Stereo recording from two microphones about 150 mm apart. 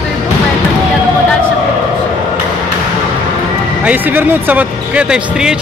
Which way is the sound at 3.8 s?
10° right (ahead or behind).